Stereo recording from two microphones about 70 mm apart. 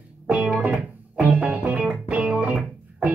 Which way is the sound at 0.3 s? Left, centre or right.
Centre.